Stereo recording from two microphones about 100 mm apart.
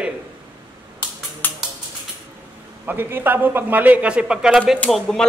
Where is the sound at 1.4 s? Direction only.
20° left (ahead or behind).